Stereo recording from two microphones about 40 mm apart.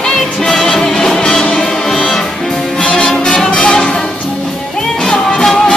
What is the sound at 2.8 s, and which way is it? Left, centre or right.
Music, left.